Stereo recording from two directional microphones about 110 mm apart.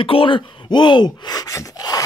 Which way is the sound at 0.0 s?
55° left (ahead or behind).